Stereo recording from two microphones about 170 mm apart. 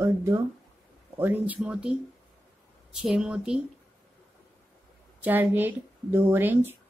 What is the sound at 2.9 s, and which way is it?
Speech, 5° right (ahead or behind).